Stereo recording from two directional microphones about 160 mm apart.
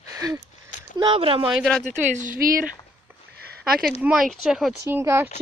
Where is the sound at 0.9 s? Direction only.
30° right (ahead or behind).